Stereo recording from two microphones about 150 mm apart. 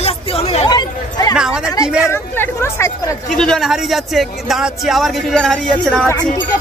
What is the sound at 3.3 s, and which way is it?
Speech, 5° left (ahead or behind).